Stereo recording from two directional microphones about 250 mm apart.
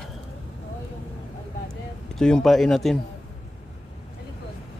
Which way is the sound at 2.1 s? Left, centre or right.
Centre.